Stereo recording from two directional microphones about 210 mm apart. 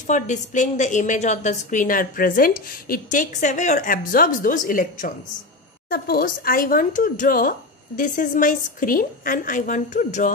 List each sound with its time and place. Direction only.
0.0 s a woman's voice: 35° left (ahead or behind)